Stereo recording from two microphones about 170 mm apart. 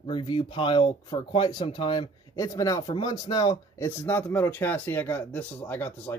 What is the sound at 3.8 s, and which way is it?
Speech, 10° left (ahead or behind).